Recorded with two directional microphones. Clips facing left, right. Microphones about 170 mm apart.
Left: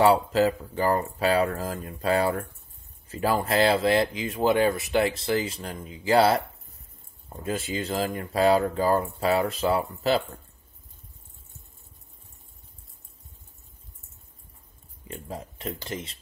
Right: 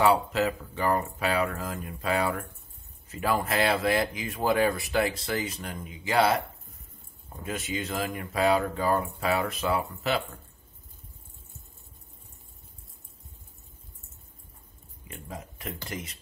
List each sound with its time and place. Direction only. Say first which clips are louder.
0.0 s speech: left 4 dB; 30° left (ahead or behind)
7.4 s speech: left 3 dB; 30° left (ahead or behind)
15.0 s speech: left 4 dB; 30° left (ahead or behind)